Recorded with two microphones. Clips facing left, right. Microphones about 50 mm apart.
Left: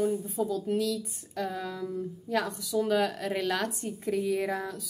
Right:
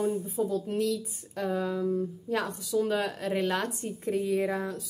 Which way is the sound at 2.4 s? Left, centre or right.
Left.